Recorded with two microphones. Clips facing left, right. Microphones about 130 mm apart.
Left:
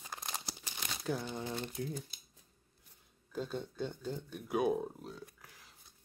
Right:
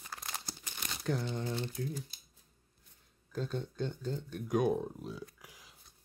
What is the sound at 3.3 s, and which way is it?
Speech, 10° left (ahead or behind).